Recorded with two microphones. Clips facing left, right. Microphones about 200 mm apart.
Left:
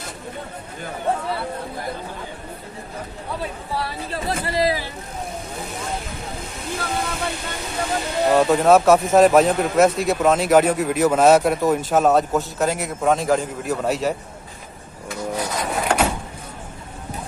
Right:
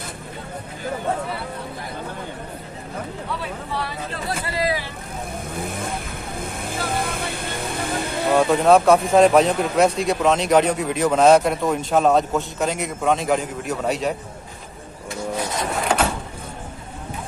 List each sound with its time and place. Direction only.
4.6 s vehicle: 40° left (ahead or behind)
5.5 s vehicle: 55° right (ahead or behind)
8.4 s a man's voice: centre (ahead or behind)
15.8 s vehicle: 10° left (ahead or behind)